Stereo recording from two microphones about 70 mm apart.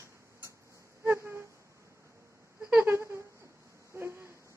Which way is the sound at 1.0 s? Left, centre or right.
Right.